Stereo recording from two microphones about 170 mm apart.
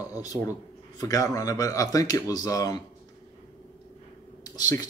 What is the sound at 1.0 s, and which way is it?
A man's voice, 20° left (ahead or behind).